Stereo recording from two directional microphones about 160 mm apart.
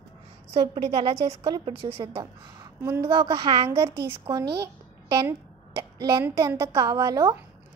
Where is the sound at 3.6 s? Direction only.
15° right (ahead or behind).